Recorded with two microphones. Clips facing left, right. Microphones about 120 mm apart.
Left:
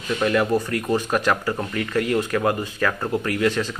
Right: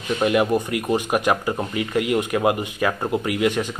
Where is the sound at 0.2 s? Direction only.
15° right (ahead or behind).